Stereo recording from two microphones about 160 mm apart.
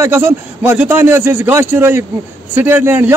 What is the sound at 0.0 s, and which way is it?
A man's voice, 15° right (ahead or behind).